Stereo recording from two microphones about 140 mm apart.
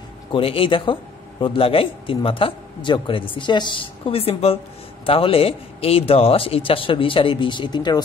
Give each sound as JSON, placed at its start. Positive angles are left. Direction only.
{"t": 0.3, "sound": "speech", "side_deg": 40}